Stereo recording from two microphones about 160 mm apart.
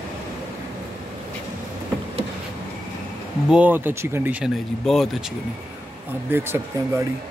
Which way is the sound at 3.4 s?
10° right (ahead or behind).